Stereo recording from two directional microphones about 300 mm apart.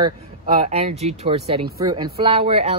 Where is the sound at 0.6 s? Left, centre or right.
Right.